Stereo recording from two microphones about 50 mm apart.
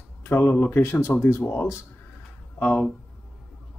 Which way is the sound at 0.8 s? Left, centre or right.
Left.